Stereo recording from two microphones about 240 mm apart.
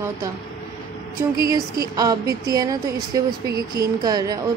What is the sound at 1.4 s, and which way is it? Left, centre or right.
A woman's voice, centre.